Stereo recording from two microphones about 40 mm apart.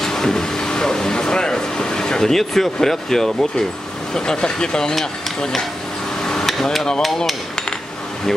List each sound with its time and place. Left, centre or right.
0.0 s speech: centre
4.1 s speech: centre
6.2 s a sound: centre